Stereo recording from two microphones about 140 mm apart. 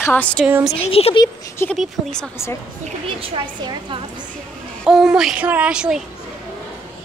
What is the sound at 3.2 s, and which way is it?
Speech, 40° right (ahead or behind).